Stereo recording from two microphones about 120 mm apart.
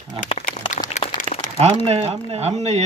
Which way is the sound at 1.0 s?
90° left.